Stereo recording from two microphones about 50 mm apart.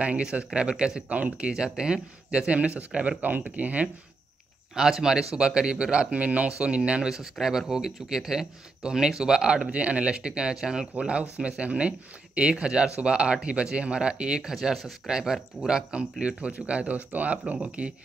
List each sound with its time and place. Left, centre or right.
0.0 s speech: right
1.0 s speech: right
1.5 s speech: centre
3.2 s speech: right
4.7 s speech: centre
7.1 s speech: centre
11.0 s speech: right
14.5 s speech: centre; by 17.9 s right